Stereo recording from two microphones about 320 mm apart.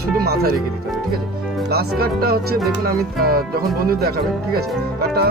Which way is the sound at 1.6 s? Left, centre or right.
Right.